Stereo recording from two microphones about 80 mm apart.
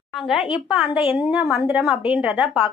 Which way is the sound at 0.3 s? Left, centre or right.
Centre.